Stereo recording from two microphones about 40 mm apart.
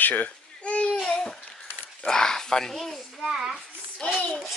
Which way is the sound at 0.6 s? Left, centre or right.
Left.